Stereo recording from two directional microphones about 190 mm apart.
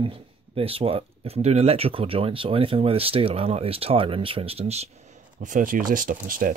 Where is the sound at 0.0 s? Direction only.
30° right (ahead or behind).